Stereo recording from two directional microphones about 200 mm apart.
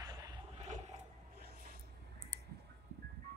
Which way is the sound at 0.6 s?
35° right (ahead or behind).